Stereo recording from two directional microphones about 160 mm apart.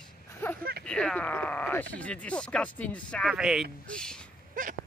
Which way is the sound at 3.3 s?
5° right (ahead or behind).